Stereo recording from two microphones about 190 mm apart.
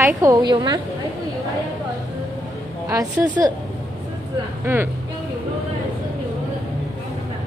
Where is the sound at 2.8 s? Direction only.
15° right (ahead or behind).